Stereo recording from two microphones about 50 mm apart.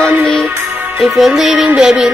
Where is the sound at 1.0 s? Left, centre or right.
Centre.